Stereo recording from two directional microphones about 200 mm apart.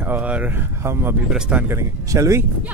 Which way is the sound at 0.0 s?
10° right (ahead or behind).